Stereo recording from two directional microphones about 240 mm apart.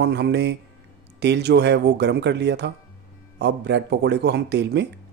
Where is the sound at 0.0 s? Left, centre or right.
Right.